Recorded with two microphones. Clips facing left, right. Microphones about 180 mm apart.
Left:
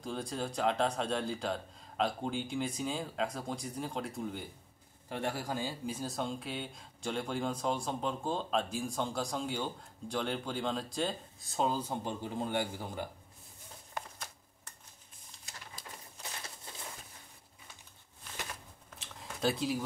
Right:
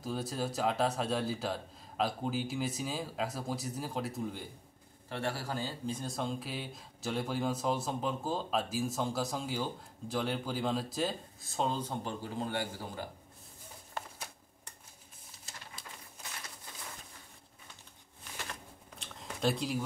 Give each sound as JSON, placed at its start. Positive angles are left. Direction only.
{"t": 0.0, "sound": "speech", "side_deg": -5}
{"t": 5.1, "sound": "speech", "side_deg": 15}
{"t": 12.0, "sound": "a man's voice", "side_deg": 15}
{"t": 14.0, "sound": "shuffling cards", "side_deg": 15}
{"t": 18.5, "sound": "a sound", "side_deg": 0}